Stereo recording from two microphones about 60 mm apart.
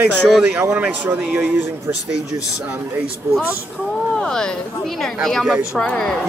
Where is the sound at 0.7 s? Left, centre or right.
Right.